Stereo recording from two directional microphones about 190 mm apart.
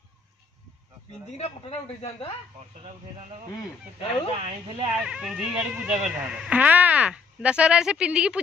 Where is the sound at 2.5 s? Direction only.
30° right (ahead or behind).